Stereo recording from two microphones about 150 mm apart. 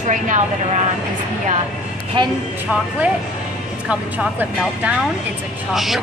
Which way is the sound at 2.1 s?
35° right (ahead or behind).